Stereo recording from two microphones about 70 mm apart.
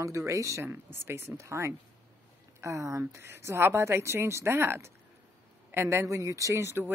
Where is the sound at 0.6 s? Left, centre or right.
Right.